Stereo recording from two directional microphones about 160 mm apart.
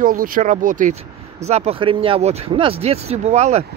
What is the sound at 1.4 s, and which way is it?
Speech, 40° right (ahead or behind).